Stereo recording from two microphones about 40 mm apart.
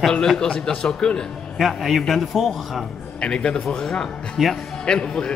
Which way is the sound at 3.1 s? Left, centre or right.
Left.